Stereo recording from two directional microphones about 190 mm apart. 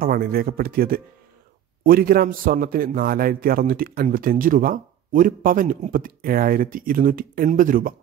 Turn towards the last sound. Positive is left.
turn(degrees=-45)  # may be behind; listen again after turning